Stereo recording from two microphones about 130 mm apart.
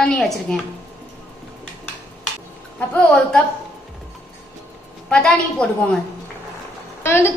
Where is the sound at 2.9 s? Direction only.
5° left (ahead or behind).